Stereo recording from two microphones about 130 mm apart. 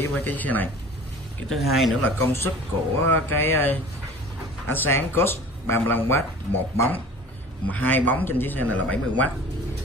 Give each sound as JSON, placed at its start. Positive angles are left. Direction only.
{"t": 0.0, "sound": "speech", "side_deg": 15}
{"t": 1.5, "sound": "speech", "side_deg": 0}
{"t": 2.0, "sound": "speech", "side_deg": 20}